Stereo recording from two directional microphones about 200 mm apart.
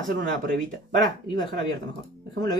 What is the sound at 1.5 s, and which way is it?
Speech, 20° left (ahead or behind).